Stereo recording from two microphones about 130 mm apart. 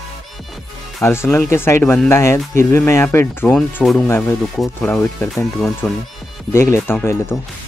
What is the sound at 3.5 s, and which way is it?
Speech, centre (ahead or behind).